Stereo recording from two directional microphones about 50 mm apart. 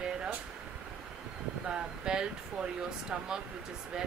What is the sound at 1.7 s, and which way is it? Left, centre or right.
Speech, centre.